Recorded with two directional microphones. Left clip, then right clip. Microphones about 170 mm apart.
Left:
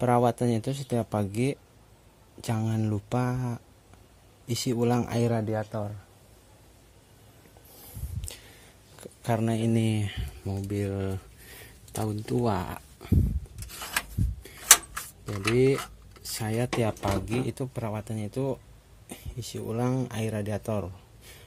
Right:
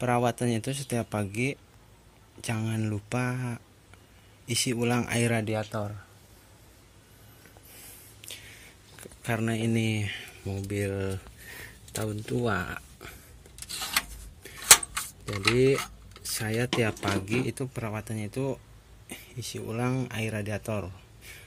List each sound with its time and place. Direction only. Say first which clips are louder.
0.0 s speech: left 3 dB; 30° left (ahead or behind); by 5.9 s 10° left (ahead or behind)
8.2 s a sound: right 3 dB; 40° left (ahead or behind)
9.0 s speech: left 2 dB; 30° left (ahead or behind)
15.5 s speech: left 2 dB; 25° left (ahead or behind)